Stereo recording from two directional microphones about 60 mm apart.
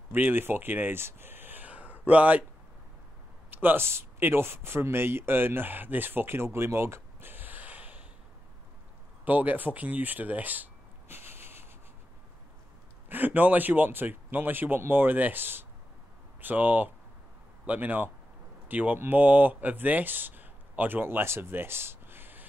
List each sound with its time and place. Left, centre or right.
0.1 s speech: right
3.4 s speech: right
9.2 s speech: right
13.1 s speech: right